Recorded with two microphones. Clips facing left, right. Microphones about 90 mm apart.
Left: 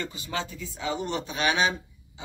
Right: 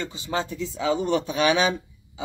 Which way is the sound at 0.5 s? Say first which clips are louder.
Right 9 dB; 80° right.